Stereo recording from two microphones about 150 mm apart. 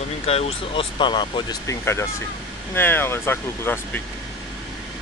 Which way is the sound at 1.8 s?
15° left (ahead or behind).